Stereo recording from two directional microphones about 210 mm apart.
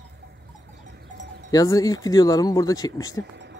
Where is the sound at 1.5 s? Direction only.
15° left (ahead or behind).